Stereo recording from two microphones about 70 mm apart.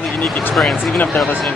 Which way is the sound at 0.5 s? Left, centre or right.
Centre.